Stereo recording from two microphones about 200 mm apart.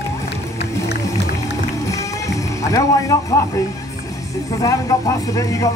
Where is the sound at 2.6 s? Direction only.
15° left (ahead or behind).